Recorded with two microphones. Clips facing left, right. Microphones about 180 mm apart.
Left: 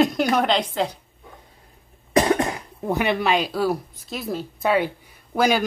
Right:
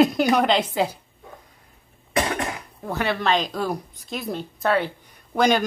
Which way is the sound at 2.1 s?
30° left (ahead or behind).